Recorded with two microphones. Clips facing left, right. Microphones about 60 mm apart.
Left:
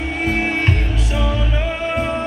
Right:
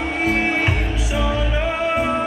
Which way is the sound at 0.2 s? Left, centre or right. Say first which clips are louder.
Even; centre.